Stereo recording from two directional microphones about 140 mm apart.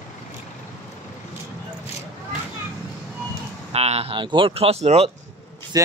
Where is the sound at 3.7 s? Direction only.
45° right (ahead or behind).